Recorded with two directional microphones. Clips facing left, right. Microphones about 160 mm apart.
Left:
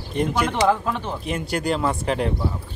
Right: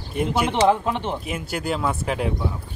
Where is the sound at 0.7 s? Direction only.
20° right (ahead or behind).